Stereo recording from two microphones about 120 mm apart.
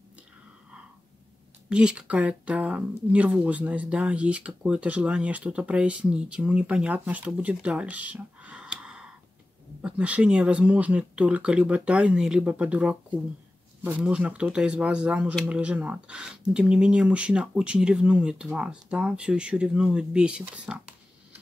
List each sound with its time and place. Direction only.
1.7 s speech: 5° right (ahead or behind)